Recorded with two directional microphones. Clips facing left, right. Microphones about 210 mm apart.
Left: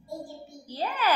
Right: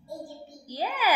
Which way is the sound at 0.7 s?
10° right (ahead or behind).